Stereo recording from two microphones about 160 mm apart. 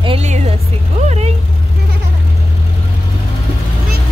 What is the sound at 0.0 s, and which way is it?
Vehicle, 35° right (ahead or behind).